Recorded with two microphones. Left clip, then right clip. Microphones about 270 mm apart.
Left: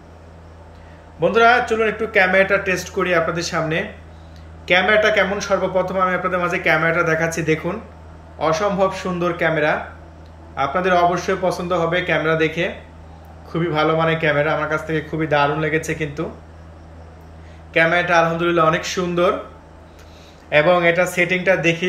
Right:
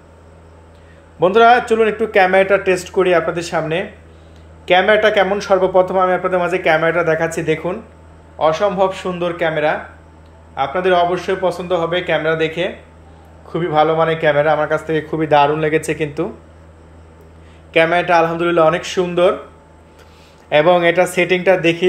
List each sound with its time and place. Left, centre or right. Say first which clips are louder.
1.2 s a man's voice: right 4 dB; right
17.7 s a man's voice: right 3 dB; right
20.4 s a man's voice: right 3 dB; right